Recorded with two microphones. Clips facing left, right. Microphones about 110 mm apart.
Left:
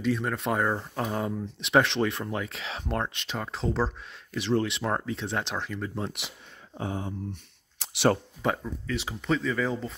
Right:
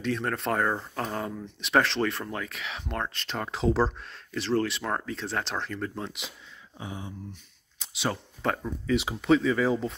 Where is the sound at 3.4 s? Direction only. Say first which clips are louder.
Right 4 dB; 5° right (ahead or behind).